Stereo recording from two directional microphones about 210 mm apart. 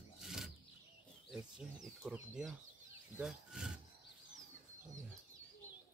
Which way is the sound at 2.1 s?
5° right (ahead or behind).